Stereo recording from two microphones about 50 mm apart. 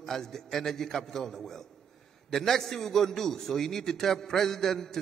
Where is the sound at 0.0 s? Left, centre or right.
Centre.